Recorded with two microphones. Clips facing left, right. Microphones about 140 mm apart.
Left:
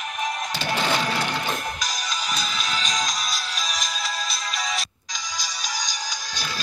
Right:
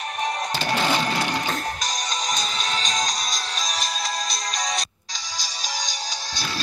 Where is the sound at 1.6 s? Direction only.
35° right (ahead or behind).